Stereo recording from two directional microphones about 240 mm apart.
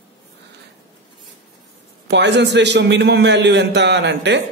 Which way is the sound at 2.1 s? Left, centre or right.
Right.